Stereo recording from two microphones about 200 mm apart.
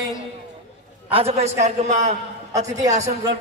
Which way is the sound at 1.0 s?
30° right (ahead or behind).